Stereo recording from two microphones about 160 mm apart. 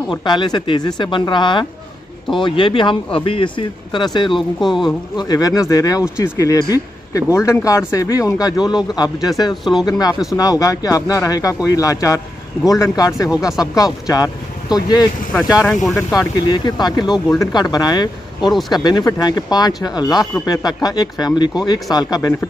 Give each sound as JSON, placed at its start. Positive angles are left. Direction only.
{"t": 0.1, "sound": "speech", "side_deg": 30}
{"t": 4.4, "sound": "a woman's voice", "side_deg": 0}
{"t": 4.8, "sound": "speech", "side_deg": 25}
{"t": 15.6, "sound": "a woman's voice", "side_deg": 0}
{"t": 16.1, "sound": "speech", "side_deg": 25}